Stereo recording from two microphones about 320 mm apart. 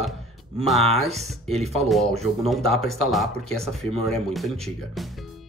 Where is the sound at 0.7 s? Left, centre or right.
Centre.